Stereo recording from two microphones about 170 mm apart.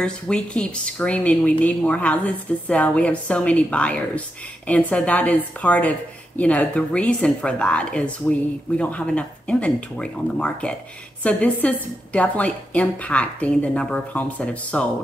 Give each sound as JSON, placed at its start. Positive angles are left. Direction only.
{"t": 0.0, "sound": "a woman's voice", "side_deg": 5}